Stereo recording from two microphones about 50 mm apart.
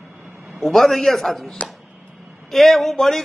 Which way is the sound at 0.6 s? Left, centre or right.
Centre.